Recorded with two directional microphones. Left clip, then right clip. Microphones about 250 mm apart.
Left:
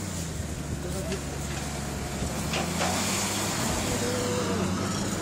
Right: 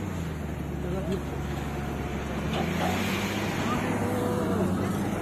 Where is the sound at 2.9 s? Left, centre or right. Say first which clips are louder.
Left 1 dB; left.